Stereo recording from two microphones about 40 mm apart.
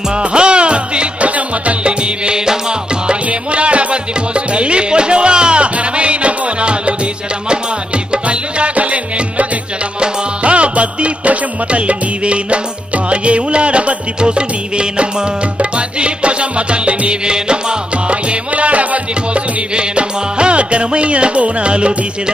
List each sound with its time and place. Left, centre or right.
0.1 s music: right
3.1 s music: right
8.1 s music: right
19.7 s music: right